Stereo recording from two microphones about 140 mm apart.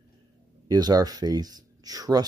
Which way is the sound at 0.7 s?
30° right (ahead or behind).